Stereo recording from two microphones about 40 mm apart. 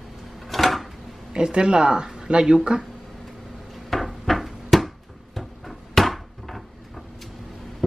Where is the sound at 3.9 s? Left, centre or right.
Centre.